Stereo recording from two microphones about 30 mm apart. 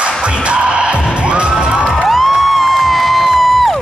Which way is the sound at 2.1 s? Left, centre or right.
Centre.